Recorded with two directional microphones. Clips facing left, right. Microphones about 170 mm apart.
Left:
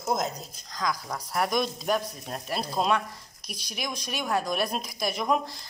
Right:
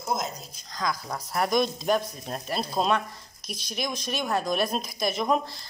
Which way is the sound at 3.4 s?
10° left (ahead or behind).